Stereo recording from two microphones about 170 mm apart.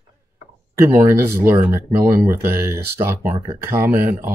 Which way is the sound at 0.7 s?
15° right (ahead or behind).